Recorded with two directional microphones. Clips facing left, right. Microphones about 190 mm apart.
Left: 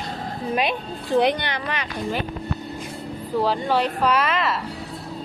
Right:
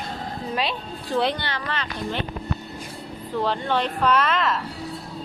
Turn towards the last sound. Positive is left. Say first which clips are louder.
# even
turn(degrees=5)  # may be behind; listen again after turning